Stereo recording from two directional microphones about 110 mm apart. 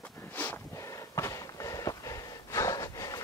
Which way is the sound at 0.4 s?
15° left (ahead or behind).